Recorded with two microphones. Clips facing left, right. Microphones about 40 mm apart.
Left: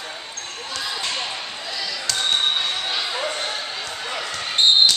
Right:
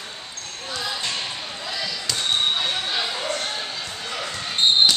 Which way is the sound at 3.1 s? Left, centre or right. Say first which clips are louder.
Left 1 dB; centre.